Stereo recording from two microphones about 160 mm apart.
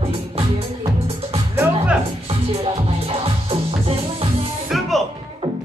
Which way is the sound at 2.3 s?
35° right (ahead or behind).